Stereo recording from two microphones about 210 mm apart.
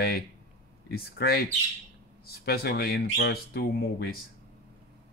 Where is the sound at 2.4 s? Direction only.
50° left (ahead or behind).